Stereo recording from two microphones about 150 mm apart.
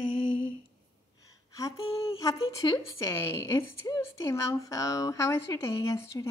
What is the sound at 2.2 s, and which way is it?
Speech, 20° left (ahead or behind).